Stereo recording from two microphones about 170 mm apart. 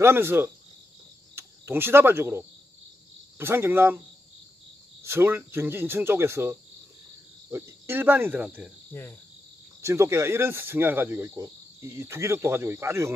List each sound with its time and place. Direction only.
0.0 s speech: 15° right (ahead or behind)
5.0 s speech: 15° right (ahead or behind)
9.8 s speech: 15° right (ahead or behind)